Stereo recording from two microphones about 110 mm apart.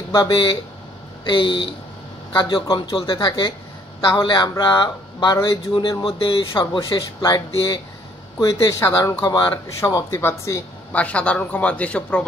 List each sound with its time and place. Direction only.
0.1 s speech: 45° left (ahead or behind)
6.9 s speech: 40° left (ahead or behind)
8.4 s speech: 30° left (ahead or behind)
10.9 s speech: 10° left (ahead or behind)